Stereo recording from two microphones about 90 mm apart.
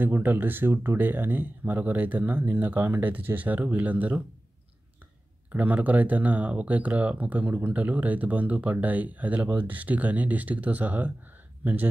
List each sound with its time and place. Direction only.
0.0 s speech: 20° right (ahead or behind)
5.5 s speech: 20° right (ahead or behind)